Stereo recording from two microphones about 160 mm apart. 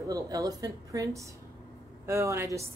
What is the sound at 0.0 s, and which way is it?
Speech, 20° right (ahead or behind).